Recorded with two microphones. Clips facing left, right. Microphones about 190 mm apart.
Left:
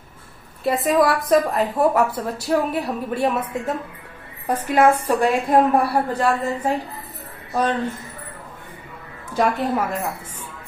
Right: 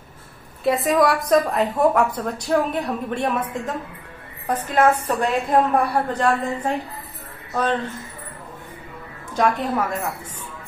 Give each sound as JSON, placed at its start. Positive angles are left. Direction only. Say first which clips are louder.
{"t": 0.7, "sound": "a woman's voice", "louder": "even", "side_deg": 0}
{"t": 9.3, "sound": "a woman's voice", "louder": "left 1 dB", "side_deg": 5}